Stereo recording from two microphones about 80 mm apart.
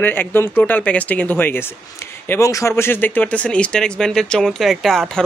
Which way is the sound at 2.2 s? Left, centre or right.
Left.